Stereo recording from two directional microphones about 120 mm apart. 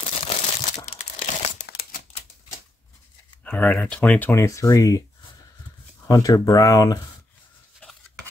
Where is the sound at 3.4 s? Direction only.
10° left (ahead or behind); by 5.0 s 30° left (ahead or behind).